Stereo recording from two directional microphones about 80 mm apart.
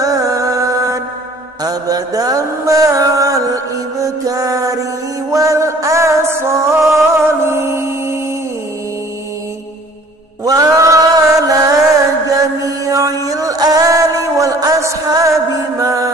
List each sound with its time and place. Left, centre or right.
0.0 s music: right
1.6 s mantra: right
4.2 s music: right
10.4 s chant: right
12.4 s music: right